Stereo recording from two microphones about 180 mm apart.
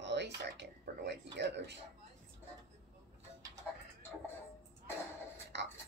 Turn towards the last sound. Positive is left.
turn(degrees=-75)  # may be behind; listen again after turning